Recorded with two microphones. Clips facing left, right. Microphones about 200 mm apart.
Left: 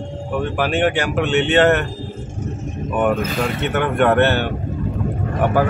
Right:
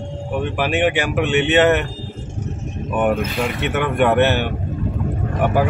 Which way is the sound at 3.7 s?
10° right (ahead or behind).